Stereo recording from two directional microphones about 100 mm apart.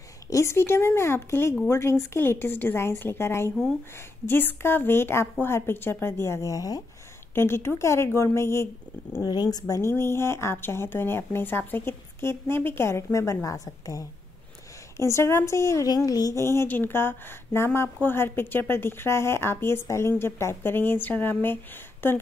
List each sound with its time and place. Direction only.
0.3 s speech: 25° left (ahead or behind)
7.3 s speech: 25° left (ahead or behind)
9.2 s speech: 40° left (ahead or behind); by 22.2 s 20° left (ahead or behind)